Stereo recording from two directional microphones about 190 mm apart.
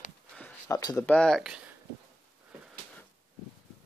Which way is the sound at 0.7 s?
20° left (ahead or behind).